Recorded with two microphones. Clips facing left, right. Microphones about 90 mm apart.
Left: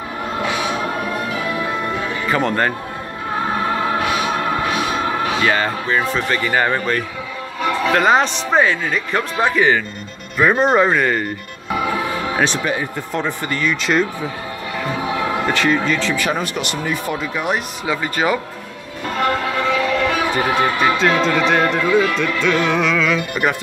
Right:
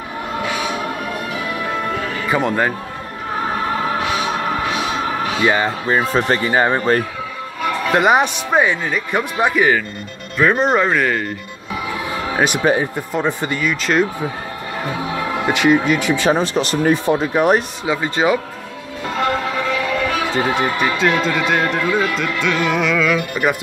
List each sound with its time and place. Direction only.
2.2 s speech: 5° right (ahead or behind)
5.4 s speech: 15° right (ahead or behind)
5.9 s speech: 35° right (ahead or behind)
6.5 s speech: 20° right (ahead or behind)
7.9 s speech: 15° right (ahead or behind)
10.3 s speech: 5° left (ahead or behind)
12.4 s speech: 15° right (ahead or behind)
13.7 s speech: 5° right (ahead or behind)
15.4 s speech: 15° right (ahead or behind)
16.3 s speech: 30° right (ahead or behind)
17.2 s speech: 40° right (ahead or behind)
17.8 s speech: 20° right (ahead or behind)
20.2 s speech: 25° right (ahead or behind)
21.3 s speech: centre (ahead or behind)